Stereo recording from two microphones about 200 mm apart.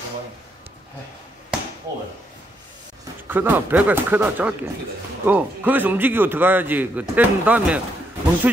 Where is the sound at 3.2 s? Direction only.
10° right (ahead or behind).